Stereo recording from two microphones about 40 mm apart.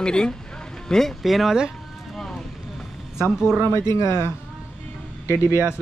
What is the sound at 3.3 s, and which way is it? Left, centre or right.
Speech, centre.